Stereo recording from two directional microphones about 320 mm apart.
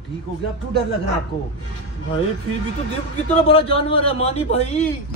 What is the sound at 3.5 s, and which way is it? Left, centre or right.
A man's voice, centre.